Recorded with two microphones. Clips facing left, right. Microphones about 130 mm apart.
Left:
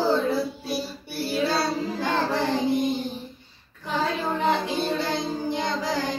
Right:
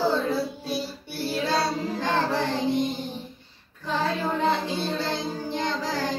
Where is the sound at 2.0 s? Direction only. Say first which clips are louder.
Even; 10° left (ahead or behind).